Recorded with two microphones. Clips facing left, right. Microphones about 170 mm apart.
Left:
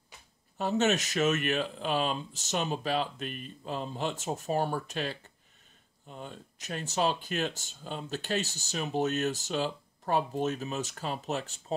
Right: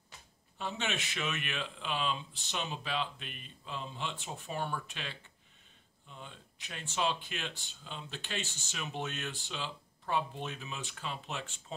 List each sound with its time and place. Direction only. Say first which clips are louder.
0.6 s speech: left 10 dB; 40° left (ahead or behind)